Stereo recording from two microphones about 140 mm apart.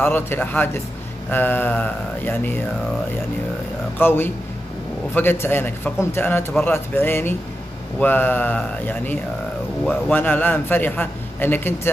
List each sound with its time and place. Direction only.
0.0 s a man's voice: 15° left (ahead or behind)
4.0 s a man's voice: 15° left (ahead or behind)